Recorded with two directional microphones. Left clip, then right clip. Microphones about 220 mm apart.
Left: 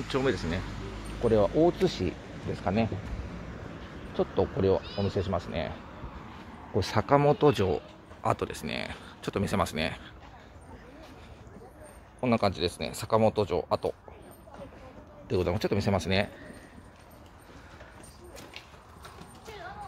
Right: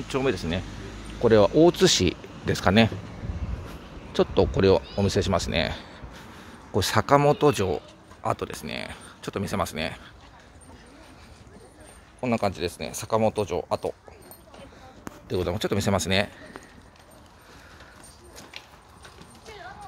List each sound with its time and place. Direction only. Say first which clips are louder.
0.1 s speech: right 3 dB; 20° right (ahead or behind)
1.2 s speech: right 6 dB; 35° right (ahead or behind)
4.1 s speech: right 6 dB; 35° right (ahead or behind)
6.7 s speech: right 5 dB; 20° right (ahead or behind); by 10.0 s centre (ahead or behind)
12.2 s speech: right 1 dB; 5° right (ahead or behind)
15.2 s speech: right 1 dB; 5° right (ahead or behind)